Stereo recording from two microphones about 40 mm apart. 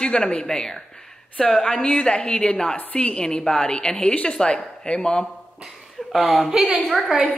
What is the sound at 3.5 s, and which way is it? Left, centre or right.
Speech, centre.